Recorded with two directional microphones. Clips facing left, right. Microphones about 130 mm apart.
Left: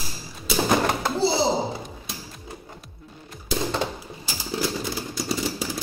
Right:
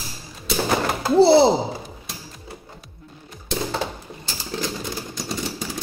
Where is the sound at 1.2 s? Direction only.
65° right (ahead or behind).